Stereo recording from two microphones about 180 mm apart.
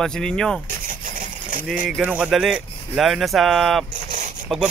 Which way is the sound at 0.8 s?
45° right (ahead or behind).